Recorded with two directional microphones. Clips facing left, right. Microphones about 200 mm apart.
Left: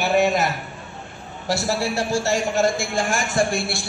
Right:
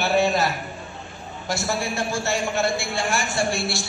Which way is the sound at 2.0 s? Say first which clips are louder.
Left 3 dB; 40° left (ahead or behind).